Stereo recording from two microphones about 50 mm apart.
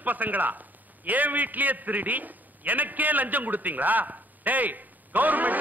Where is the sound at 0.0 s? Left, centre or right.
Right.